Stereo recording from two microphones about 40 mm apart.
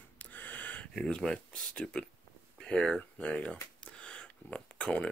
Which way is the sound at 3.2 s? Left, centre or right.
Left.